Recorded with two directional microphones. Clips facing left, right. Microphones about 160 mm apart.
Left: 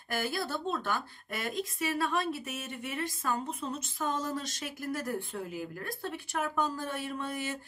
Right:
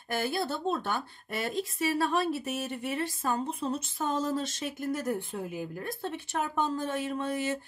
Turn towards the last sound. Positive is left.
turn(degrees=-25)  # may be behind; listen again after turning